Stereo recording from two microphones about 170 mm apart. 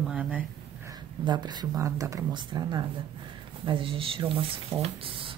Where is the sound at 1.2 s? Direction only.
25° right (ahead or behind).